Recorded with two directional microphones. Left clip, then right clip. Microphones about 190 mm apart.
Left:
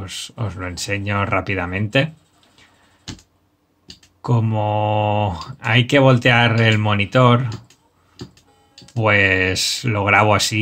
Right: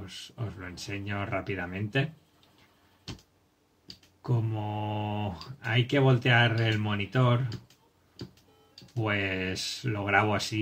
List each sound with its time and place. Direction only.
0.0 s speech: 45° left (ahead or behind)
4.2 s speech: 45° left (ahead or behind)
9.0 s speech: 45° left (ahead or behind)